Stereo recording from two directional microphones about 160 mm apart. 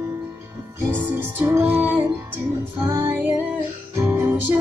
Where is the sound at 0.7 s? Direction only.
15° right (ahead or behind).